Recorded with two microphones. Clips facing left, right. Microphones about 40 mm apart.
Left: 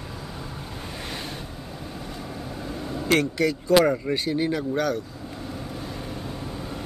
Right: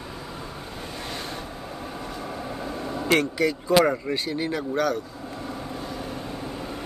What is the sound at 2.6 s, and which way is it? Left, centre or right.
Vehicle, centre.